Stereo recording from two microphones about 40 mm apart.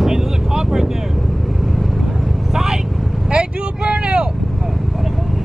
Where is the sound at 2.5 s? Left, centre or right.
Centre.